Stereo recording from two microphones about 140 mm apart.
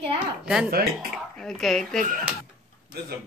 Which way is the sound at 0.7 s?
90° right.